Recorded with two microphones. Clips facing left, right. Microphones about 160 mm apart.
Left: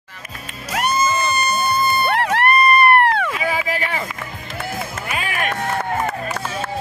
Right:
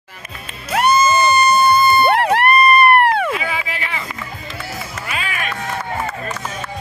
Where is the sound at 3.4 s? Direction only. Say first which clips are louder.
Left 3 dB; 40° left (ahead or behind).